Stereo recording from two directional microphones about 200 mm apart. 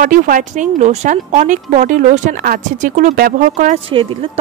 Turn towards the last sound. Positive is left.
turn(degrees=-25)  # may be behind; listen again after turning